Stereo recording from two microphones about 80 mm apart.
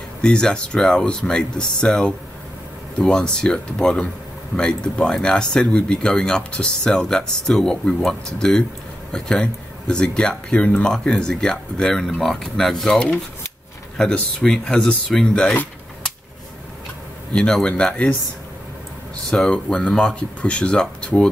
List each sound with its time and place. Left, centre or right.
0.2 s speech: centre
15.4 s speech: left
17.3 s speech: centre
19.3 s speech: centre